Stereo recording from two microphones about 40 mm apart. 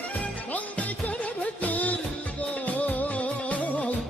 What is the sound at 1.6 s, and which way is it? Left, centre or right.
Music, left.